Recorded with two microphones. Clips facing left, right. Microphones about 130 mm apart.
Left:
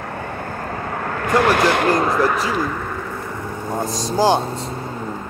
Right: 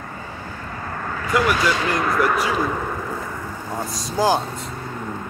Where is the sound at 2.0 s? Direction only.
30° left (ahead or behind).